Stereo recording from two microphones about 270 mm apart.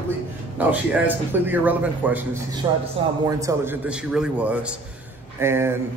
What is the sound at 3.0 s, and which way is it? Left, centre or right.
Speech, centre.